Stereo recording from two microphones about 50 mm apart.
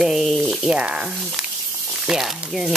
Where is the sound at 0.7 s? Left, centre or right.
Centre.